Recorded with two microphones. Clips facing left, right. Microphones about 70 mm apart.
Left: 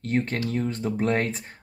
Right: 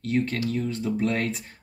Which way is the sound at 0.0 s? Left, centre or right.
Left.